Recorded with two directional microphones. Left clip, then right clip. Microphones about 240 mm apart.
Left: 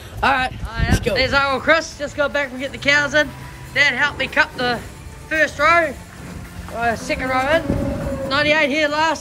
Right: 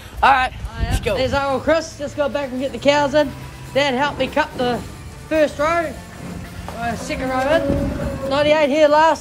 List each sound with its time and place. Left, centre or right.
0.2 s speech: centre
6.8 s speech: centre